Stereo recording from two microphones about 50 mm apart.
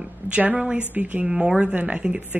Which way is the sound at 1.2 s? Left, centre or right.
Centre.